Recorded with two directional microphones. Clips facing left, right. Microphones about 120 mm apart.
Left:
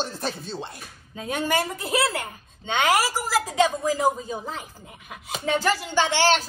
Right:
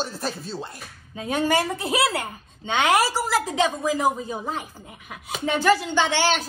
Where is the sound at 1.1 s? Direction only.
30° right (ahead or behind).